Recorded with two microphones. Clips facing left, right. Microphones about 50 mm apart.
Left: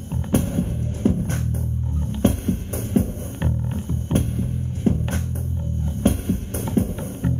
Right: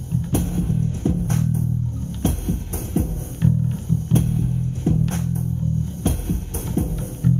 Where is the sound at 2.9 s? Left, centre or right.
Left.